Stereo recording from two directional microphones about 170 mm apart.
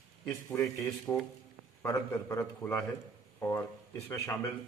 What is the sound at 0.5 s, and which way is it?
A man's voice, 15° left (ahead or behind).